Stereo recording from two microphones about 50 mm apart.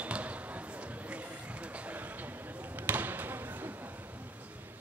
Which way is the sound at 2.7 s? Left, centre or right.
Right.